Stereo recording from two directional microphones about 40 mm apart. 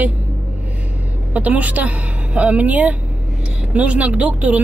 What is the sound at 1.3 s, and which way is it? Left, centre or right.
Speech, right.